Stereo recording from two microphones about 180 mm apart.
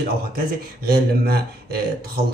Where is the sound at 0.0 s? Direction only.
60° right (ahead or behind).